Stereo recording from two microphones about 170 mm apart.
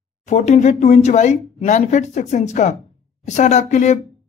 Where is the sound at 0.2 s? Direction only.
40° left (ahead or behind).